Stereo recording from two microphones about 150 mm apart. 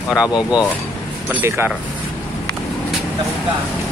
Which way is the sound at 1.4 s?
15° right (ahead or behind).